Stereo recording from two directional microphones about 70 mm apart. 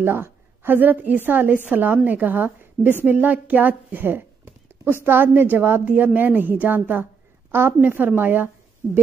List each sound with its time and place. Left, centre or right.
0.0 s a woman's voice: right